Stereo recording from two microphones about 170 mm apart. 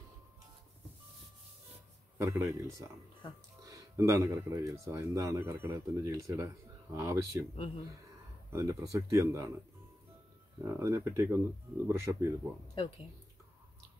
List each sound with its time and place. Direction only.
2.1 s speech: 15° right (ahead or behind)
3.7 s speech: 20° right (ahead or behind)
8.5 s speech: 15° right (ahead or behind)
10.6 s speech: 15° right (ahead or behind)